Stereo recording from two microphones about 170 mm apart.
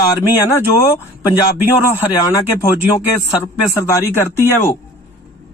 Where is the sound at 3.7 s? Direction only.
15° left (ahead or behind).